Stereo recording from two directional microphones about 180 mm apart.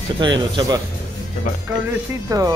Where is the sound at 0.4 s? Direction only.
25° right (ahead or behind).